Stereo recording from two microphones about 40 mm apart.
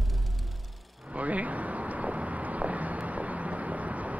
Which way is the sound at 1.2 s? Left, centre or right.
Right.